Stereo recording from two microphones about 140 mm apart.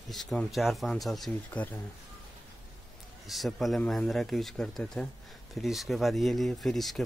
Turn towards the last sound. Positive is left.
turn(degrees=0)  # may be behind; listen again after turning